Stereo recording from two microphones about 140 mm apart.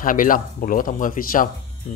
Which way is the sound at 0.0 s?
75° left (ahead or behind).